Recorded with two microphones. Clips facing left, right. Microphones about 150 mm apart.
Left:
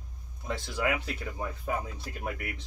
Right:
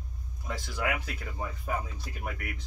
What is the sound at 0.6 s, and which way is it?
Speech, 25° left (ahead or behind).